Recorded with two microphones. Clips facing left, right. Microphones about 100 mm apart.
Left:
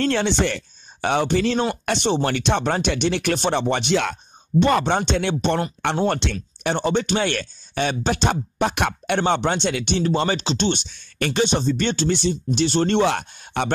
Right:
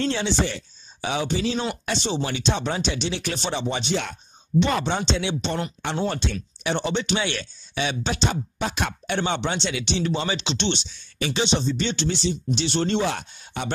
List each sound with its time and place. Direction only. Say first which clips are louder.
0.0 s speech: left 4 dB; 55° left (ahead or behind); by 4.2 s 90° left
4.6 s speech: left 4 dB; 55° left (ahead or behind)
6.0 s speech: left 4 dB; 75° left (ahead or behind)
6.3 s speech: left 2 dB; 45° left (ahead or behind); by 13.7 s 60° left (ahead or behind)